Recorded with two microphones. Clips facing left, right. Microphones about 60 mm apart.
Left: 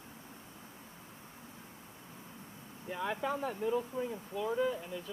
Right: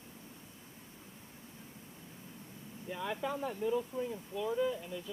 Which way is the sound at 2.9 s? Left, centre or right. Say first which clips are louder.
Left 2 dB; centre.